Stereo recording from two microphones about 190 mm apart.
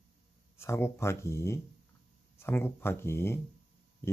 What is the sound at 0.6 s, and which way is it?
Speech, 15° left (ahead or behind).